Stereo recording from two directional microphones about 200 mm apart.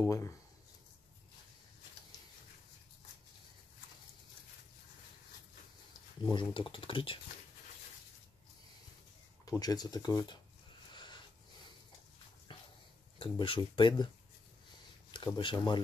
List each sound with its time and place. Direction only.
0.0 s speech: 15° left (ahead or behind)
6.2 s speech: 25° left (ahead or behind)
9.5 s speech: 20° left (ahead or behind)
10.9 s a sound: 20° left (ahead or behind)
12.5 s dog: 25° left (ahead or behind)
13.2 s speech: 25° left (ahead or behind)
15.0 s speech: 20° left (ahead or behind)